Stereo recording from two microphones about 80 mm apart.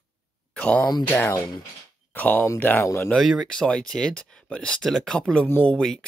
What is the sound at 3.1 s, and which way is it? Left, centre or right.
Speech, centre.